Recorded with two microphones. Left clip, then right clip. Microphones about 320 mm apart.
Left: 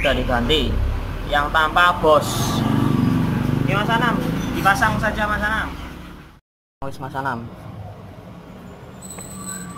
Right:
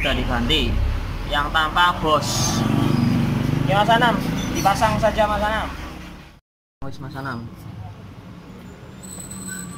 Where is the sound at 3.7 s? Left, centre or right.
Centre.